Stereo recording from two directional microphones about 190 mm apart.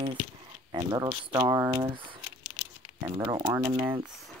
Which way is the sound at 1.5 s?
15° right (ahead or behind).